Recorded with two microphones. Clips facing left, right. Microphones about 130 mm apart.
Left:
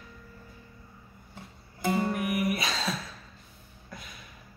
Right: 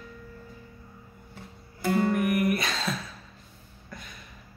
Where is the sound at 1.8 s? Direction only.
20° left (ahead or behind).